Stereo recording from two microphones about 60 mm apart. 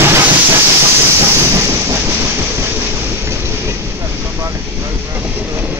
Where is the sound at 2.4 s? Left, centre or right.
Right.